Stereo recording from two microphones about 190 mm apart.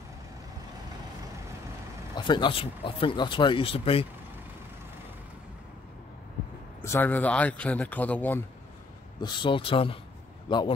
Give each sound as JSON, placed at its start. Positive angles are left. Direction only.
{"t": 2.1, "sound": "speech", "side_deg": 25}
{"t": 6.8, "sound": "speech", "side_deg": 10}
{"t": 9.2, "sound": "speech", "side_deg": 25}